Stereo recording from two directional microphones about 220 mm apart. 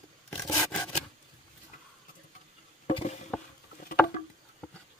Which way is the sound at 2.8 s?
30° left (ahead or behind).